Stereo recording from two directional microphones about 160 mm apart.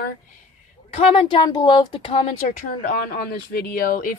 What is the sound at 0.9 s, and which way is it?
A woman's voice, 35° left (ahead or behind).